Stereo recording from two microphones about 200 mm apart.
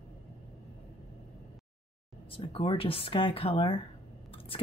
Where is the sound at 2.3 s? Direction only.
25° left (ahead or behind).